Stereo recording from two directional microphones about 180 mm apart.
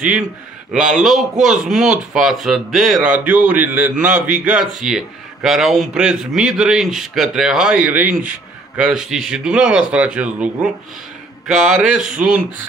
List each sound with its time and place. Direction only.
0.7 s speech: centre (ahead or behind)